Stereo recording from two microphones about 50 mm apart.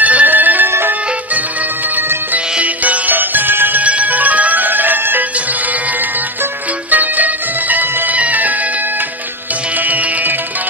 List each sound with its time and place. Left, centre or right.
0.0 s music: right
0.7 s music: right
2.6 s music: right
3.8 s music: right
6.9 s music: right